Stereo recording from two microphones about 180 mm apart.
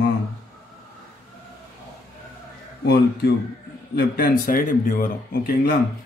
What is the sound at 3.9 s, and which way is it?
Speech, 55° left (ahead or behind).